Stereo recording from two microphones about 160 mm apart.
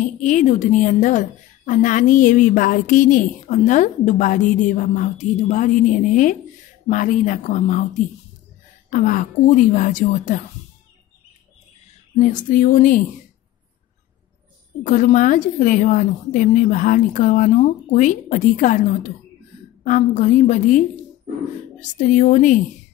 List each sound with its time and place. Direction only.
0.0 s a woman's voice: 50° left (ahead or behind)
12.2 s a sound: 55° left (ahead or behind)
14.8 s a woman's voice: 55° left (ahead or behind)
21.9 s a woman's voice: 50° left (ahead or behind)